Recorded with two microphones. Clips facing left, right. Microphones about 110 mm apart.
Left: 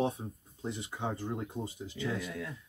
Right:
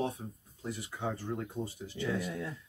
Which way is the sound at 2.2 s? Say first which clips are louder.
Right 2 dB; 25° right (ahead or behind).